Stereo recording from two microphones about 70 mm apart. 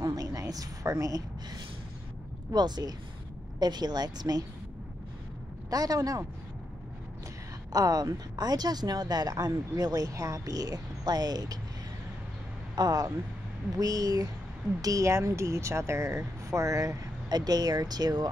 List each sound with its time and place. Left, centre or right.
0.0 s a sound: right
2.5 s speech: right
5.7 s a man's voice: right
7.7 s speech: right
12.7 s a man's voice: right